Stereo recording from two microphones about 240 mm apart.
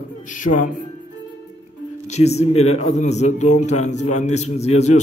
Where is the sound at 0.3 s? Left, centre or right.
Left.